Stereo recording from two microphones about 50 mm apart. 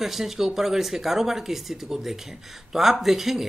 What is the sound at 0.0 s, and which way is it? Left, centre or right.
Speech, centre.